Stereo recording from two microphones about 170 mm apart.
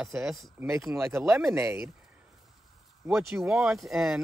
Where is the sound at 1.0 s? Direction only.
15° right (ahead or behind).